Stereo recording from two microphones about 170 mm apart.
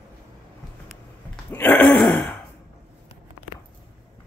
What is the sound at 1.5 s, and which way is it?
Throat clearing, 10° left (ahead or behind).